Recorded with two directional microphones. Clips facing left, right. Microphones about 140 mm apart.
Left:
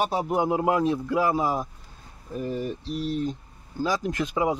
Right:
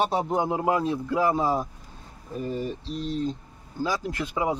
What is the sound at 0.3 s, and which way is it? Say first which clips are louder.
Speech: left 1 dB; 15° left (ahead or behind).